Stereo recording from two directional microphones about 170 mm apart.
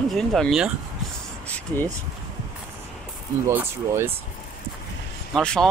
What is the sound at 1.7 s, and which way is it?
Speech, 10° left (ahead or behind).